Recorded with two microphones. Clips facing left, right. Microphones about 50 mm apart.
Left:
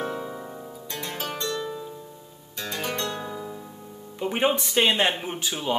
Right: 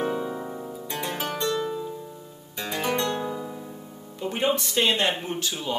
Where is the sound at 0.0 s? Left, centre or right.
Centre.